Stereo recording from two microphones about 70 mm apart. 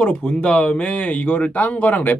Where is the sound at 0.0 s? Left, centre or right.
Centre.